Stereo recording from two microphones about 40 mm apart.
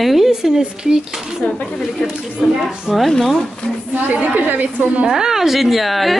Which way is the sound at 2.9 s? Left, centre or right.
Centre.